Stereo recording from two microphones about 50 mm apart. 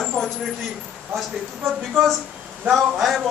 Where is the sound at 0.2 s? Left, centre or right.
Centre.